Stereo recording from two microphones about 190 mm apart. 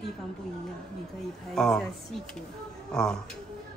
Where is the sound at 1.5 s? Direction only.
5° left (ahead or behind).